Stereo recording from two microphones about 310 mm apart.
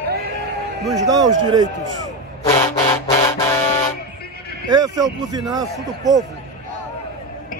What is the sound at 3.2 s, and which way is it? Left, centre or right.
Music, centre.